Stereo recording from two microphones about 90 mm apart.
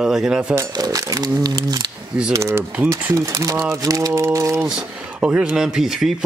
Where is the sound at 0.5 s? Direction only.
45° right (ahead or behind).